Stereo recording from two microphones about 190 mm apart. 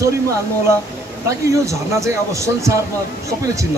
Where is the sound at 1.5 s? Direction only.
15° right (ahead or behind).